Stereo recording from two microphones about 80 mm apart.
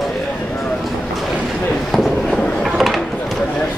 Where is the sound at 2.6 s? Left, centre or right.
Centre.